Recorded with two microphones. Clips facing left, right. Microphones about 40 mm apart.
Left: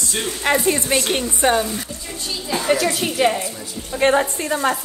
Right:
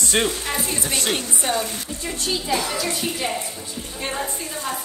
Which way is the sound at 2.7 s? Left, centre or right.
Left.